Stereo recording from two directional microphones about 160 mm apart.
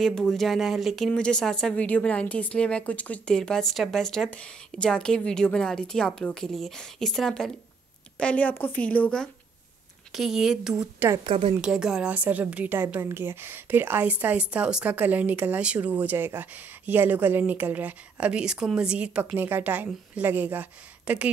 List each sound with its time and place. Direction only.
0.0 s a woman's voice: 5° left (ahead or behind)
10.1 s a woman's voice: 5° right (ahead or behind)
11.2 s speech: 35° right (ahead or behind)
11.6 s a woman's voice: 5° right (ahead or behind)